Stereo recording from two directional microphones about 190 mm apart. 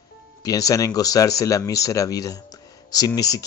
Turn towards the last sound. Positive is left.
turn(degrees=20)  # may be behind; listen again after turning